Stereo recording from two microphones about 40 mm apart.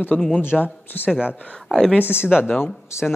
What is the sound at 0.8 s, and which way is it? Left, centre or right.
Speech, left.